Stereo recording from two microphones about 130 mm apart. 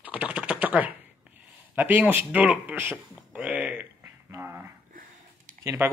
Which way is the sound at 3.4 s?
10° right (ahead or behind).